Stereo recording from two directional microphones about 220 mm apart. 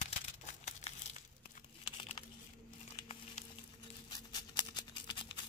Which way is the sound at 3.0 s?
25° left (ahead or behind).